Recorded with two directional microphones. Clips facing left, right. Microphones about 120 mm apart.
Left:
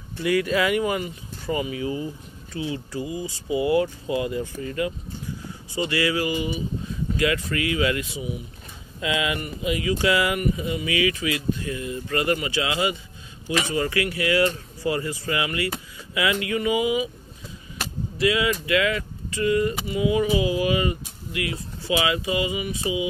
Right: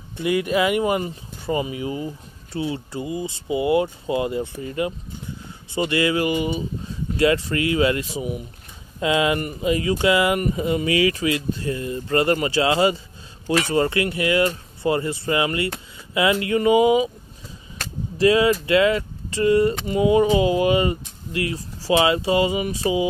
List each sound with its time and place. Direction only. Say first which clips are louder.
0.2 s speech: right 2 dB; 20° right (ahead or behind)
18.1 s speech: right 6 dB; 35° right (ahead or behind)